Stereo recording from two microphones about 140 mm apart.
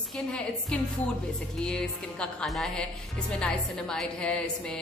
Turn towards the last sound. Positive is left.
turn(degrees=5)  # may be behind; listen again after turning